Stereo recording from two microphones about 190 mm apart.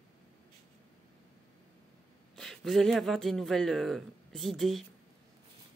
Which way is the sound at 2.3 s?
Centre (ahead or behind).